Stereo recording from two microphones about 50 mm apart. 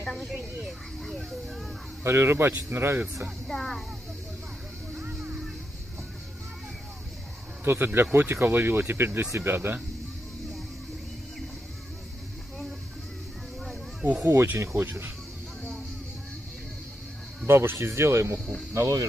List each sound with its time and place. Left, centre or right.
0.4 s a sound: centre
2.0 s speech: right
3.4 s speech: centre
5.0 s music: right
7.6 s speech: right
14.2 s speech: right
14.6 s speech: right
17.5 s speech: right
18.7 s speech: right